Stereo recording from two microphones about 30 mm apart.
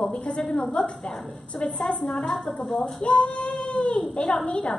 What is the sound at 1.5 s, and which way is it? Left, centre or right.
Speech, left.